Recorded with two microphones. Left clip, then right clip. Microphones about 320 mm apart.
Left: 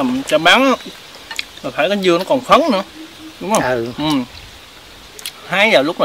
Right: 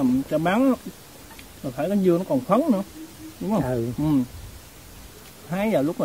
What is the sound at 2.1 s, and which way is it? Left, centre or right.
Speech, left.